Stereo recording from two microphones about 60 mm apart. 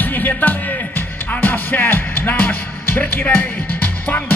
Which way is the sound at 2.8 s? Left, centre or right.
Left.